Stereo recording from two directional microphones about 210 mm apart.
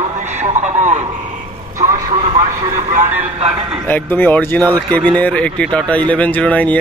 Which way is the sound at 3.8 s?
10° left (ahead or behind).